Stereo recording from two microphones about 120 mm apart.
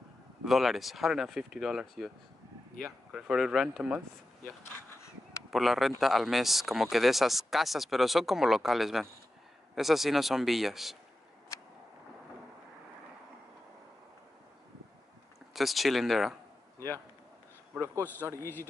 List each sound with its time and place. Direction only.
0.5 s speech: centre (ahead or behind)
3.1 s speech: 5° right (ahead or behind)
4.6 s a sound: 20° left (ahead or behind)
5.5 s speech: centre (ahead or behind)
15.5 s speech: centre (ahead or behind)
18.4 s speech: 20° left (ahead or behind)